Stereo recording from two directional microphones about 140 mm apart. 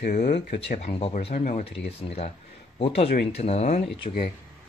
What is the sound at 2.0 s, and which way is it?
Speech, 45° left (ahead or behind).